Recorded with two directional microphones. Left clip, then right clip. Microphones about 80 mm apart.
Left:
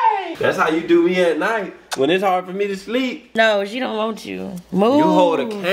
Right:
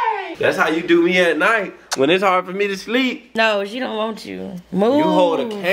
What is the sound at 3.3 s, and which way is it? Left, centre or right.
A woman's voice, centre.